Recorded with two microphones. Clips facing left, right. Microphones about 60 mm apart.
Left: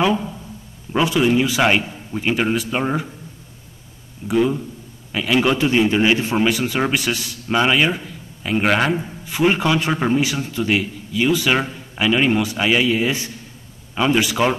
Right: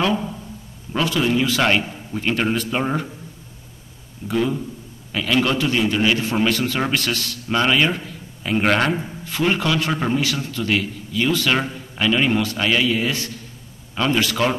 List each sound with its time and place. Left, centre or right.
0.9 s a man's voice: centre
4.3 s a man's voice: centre
6.3 s a man's voice: centre
9.2 s a man's voice: centre